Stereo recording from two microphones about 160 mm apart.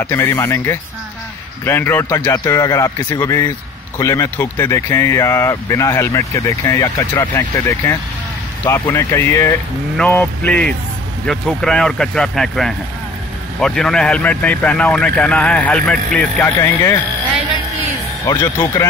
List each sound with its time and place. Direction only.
0.0 s speech: 15° left (ahead or behind)
16.4 s speech: 15° left (ahead or behind)
18.2 s speech: 25° left (ahead or behind)